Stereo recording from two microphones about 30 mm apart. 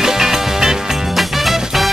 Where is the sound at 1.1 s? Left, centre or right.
Centre.